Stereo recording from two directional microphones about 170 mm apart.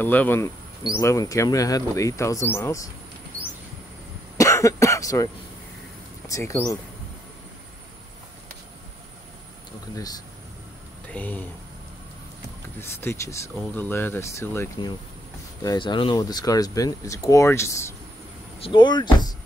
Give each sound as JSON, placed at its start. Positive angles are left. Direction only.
{"t": 0.0, "sound": "cricket", "side_deg": 10}
{"t": 4.4, "sound": "speech", "side_deg": 15}
{"t": 6.2, "sound": "cricket", "side_deg": 20}
{"t": 9.9, "sound": "speech", "side_deg": 20}
{"t": 11.1, "sound": "speech", "side_deg": 10}
{"t": 12.8, "sound": "cricket", "side_deg": 15}
{"t": 15.6, "sound": "speech", "side_deg": 25}
{"t": 18.6, "sound": "speech", "side_deg": 25}